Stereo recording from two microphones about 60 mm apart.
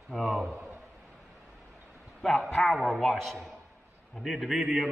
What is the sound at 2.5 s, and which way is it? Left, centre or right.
A man's voice, centre.